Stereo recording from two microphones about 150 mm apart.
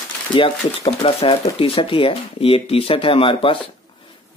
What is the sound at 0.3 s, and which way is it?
Speech, 35° left (ahead or behind).